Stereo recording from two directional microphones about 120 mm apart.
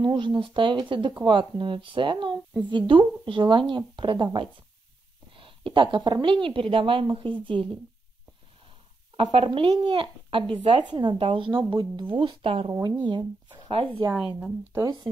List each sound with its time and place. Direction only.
0.0 s speech: 40° right (ahead or behind)
5.3 s a sound: 45° right (ahead or behind)
6.2 s speech: 45° right (ahead or behind)
9.1 s speech: 40° right (ahead or behind)
9.6 s speech: 55° right (ahead or behind)
14.1 s speech: 10° right (ahead or behind)